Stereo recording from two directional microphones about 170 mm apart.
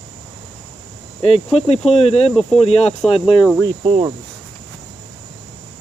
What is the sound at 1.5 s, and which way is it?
Speech, 35° left (ahead or behind).